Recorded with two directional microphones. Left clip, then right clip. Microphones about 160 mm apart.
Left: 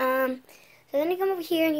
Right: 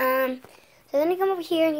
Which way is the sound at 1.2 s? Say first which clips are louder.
Right 2 dB; 5° left (ahead or behind).